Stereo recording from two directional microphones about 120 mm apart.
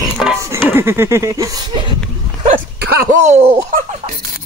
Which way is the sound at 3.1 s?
75° right (ahead or behind).